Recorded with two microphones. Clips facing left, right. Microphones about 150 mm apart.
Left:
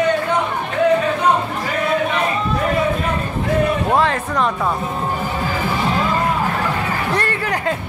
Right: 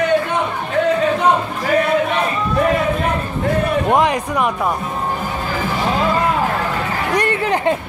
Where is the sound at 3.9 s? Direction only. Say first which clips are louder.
Right 2 dB; 15° right (ahead or behind).